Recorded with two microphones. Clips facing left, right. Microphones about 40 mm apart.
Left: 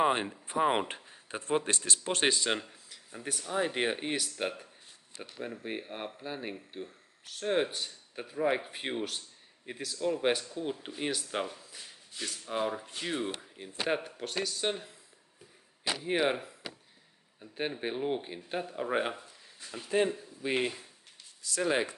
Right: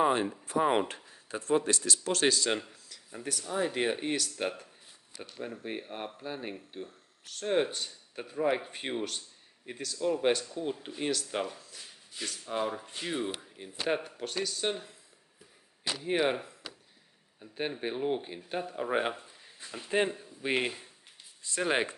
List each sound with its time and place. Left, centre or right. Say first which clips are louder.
0.0 s speech: right 1 dB; left
0.5 s speech: even; centre
5.1 s speech: even; left
5.5 s speech: left 1 dB; centre
16.0 s speech: right 1 dB; centre
19.1 s a sound: even; centre
20.2 s a man's voice: even; centre
21.4 s speech: even; right